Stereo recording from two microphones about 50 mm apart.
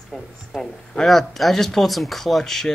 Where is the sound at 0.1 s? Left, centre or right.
Centre.